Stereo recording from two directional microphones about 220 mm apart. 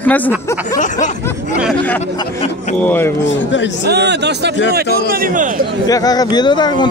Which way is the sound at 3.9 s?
50° right (ahead or behind).